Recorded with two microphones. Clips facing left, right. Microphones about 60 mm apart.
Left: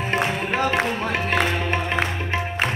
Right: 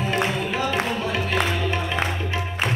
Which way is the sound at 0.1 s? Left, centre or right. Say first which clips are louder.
Left 3 dB; left.